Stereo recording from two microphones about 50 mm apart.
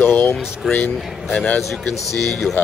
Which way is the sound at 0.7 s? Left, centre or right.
Left.